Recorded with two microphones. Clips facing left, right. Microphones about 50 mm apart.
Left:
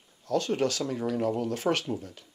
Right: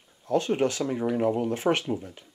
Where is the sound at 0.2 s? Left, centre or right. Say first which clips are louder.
Right 3 dB; right.